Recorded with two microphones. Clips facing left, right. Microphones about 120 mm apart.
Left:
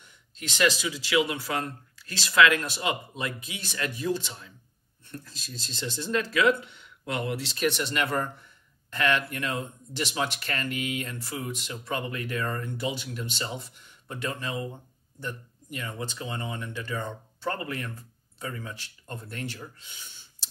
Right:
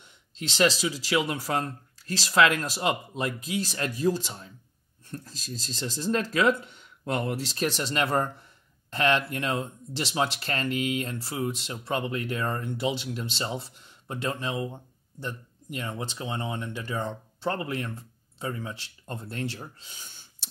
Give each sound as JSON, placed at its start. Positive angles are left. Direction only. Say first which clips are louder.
{"t": 0.0, "sound": "speech", "louder": "right 3 dB", "side_deg": -30}